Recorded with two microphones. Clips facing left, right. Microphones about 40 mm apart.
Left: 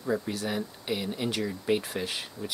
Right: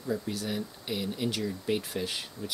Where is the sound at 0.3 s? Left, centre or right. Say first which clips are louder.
Left 2 dB; centre.